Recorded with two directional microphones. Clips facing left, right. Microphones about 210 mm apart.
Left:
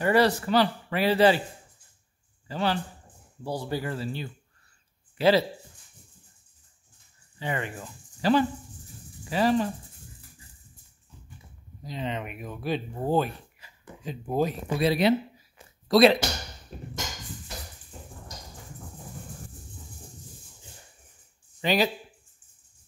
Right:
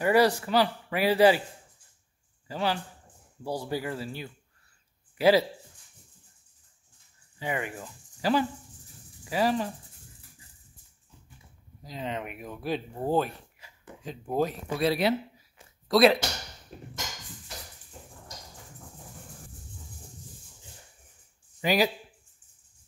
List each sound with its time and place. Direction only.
0.0 s speech: 10° right (ahead or behind)
2.4 s speech: 10° right (ahead or behind)
7.3 s speech: 10° right (ahead or behind)
11.8 s speech: 5° right (ahead or behind)
21.5 s speech: 10° right (ahead or behind)